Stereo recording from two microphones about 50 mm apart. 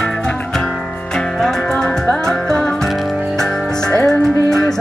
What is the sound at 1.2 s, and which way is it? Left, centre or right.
Music, centre.